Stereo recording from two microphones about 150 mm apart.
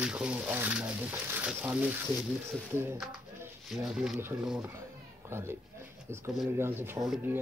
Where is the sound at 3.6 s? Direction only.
Centre (ahead or behind).